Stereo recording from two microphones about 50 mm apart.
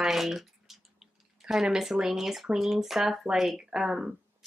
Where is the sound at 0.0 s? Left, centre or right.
Centre.